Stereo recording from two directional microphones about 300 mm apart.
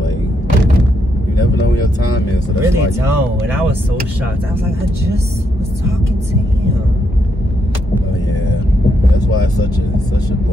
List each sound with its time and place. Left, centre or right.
2.6 s speech: centre